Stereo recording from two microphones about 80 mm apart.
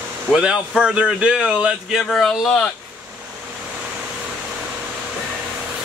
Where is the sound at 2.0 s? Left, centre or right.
Centre.